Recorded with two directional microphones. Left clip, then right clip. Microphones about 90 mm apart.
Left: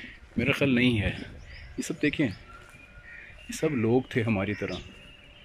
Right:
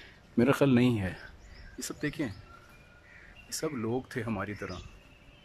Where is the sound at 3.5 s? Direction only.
25° left (ahead or behind).